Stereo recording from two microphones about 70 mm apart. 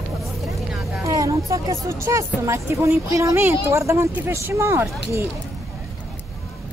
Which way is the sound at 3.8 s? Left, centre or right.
Right.